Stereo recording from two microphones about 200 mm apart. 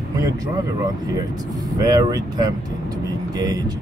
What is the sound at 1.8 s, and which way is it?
Speech, 20° right (ahead or behind).